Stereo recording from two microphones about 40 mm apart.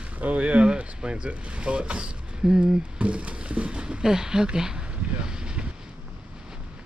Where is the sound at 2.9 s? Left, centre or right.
Right.